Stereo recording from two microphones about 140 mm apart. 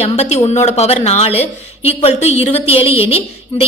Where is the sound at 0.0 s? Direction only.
50° left (ahead or behind).